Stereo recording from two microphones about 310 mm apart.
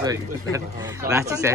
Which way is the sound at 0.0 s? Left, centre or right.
Centre.